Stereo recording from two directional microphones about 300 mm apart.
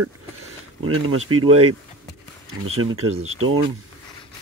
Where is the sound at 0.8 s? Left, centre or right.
Right.